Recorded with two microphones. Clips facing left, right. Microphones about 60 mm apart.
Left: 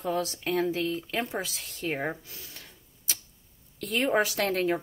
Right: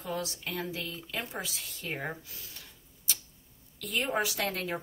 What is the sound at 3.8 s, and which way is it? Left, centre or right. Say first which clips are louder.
Speech: left 5 dB; left.